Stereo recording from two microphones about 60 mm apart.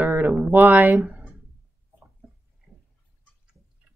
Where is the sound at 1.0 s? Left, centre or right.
Right.